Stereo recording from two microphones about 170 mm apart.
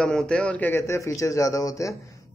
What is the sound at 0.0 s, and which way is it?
A man's voice, 5° left (ahead or behind).